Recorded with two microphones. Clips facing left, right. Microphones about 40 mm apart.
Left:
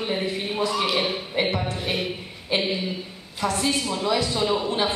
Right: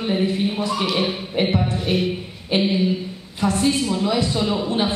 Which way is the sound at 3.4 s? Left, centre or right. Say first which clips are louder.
Right 4 dB; centre.